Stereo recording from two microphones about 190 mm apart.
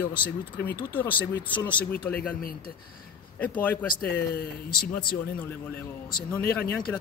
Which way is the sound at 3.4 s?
10° left (ahead or behind).